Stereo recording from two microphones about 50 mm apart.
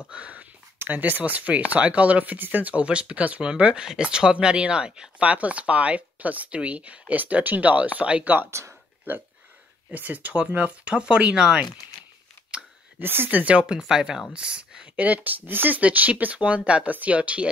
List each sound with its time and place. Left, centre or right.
0.1 s a sound: right
0.7 s speech: right; by 5.1 s centre
5.2 s speech: right
8.5 s speech: right
9.8 s speech: right
13.0 s speech: right
13.4 s speech: right
13.7 s speech: centre
15.0 s speech: right